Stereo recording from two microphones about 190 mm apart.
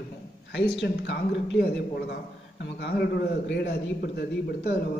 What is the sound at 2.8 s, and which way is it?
A man's voice, 55° left (ahead or behind).